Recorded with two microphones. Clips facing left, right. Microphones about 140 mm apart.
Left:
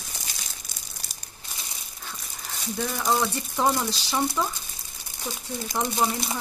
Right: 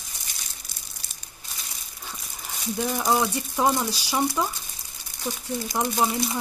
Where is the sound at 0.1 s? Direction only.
90° left.